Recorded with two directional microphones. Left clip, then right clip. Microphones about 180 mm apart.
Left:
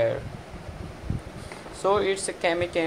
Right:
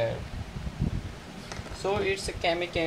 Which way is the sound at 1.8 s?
20° left (ahead or behind).